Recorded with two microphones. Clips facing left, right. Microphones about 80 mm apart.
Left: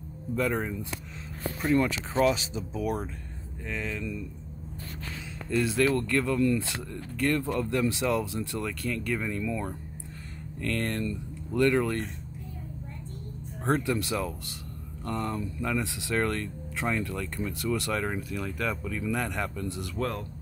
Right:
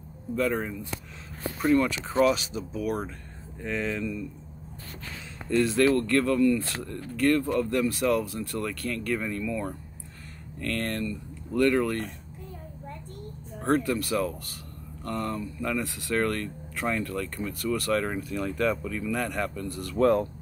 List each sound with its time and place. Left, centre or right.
0.4 s speech: centre
2.5 s speech: left
3.6 s speech: centre
5.5 s speech: centre
13.8 s speech: centre
18.0 s speech: centre
19.0 s speech: centre
20.0 s speech: centre